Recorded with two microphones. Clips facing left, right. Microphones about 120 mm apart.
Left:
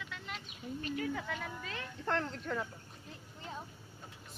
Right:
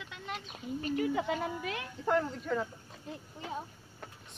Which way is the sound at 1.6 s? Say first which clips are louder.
Right 5 dB; 10° right (ahead or behind).